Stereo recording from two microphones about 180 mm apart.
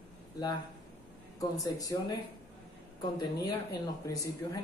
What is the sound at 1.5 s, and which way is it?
Speech, 20° left (ahead or behind).